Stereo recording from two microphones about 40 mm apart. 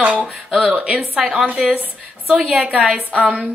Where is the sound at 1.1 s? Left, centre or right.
Right.